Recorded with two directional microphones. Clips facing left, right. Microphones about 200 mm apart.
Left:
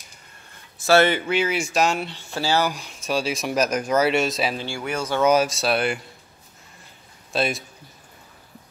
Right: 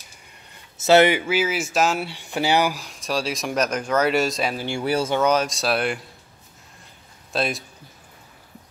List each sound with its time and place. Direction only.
0.7 s speech: 20° right (ahead or behind)
2.7 s speech: centre (ahead or behind)
4.8 s speech: 35° right (ahead or behind)
5.2 s speech: 5° left (ahead or behind)
7.3 s speech: centre (ahead or behind)